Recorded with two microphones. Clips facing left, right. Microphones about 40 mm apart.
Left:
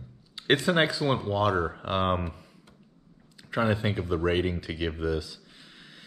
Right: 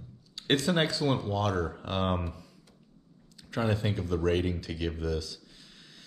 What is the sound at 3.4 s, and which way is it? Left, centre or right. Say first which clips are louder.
Speech: left 3 dB; left.